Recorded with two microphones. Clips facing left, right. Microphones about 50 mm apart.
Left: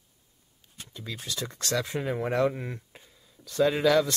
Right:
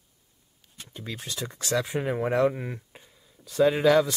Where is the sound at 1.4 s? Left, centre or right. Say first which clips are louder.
Right 2 dB; centre.